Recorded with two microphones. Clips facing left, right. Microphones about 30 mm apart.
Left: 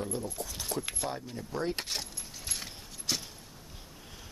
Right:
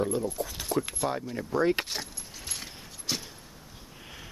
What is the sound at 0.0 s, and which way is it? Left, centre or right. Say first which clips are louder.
Speech: right 7 dB; right.